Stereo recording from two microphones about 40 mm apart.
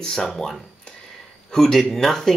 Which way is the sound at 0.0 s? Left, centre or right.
Centre.